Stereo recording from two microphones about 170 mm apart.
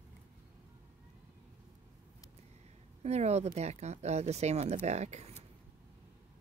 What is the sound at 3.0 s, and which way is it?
Speech, 40° right (ahead or behind).